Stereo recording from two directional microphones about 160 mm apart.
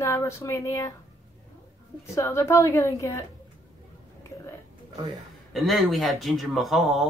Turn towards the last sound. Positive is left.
turn(degrees=0)  # may be behind; listen again after turning